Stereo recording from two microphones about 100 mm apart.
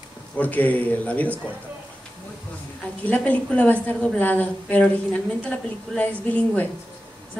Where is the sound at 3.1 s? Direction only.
15° left (ahead or behind).